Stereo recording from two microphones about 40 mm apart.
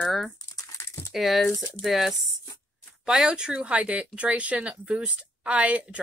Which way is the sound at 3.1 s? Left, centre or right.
Centre.